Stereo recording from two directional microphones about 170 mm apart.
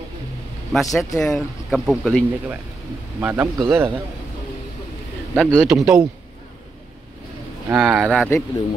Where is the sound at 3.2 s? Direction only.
15° right (ahead or behind).